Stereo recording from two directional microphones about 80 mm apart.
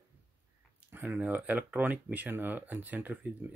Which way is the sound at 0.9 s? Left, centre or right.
Right.